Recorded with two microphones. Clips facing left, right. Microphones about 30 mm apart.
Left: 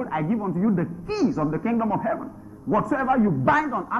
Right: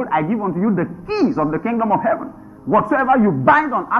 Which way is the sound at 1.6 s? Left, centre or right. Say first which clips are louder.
Right 7 dB; centre.